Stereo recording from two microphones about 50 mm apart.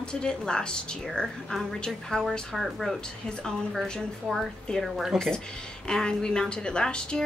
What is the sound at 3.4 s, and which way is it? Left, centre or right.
Speech, centre.